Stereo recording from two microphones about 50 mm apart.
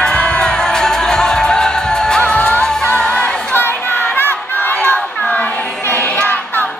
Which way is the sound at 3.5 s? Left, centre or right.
Left.